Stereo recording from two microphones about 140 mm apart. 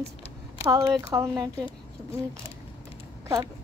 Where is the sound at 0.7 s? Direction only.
25° right (ahead or behind).